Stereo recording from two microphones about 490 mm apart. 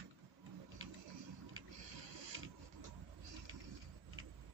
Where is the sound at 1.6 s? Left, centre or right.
Right.